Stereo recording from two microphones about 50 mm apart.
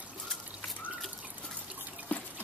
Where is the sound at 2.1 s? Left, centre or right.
Left.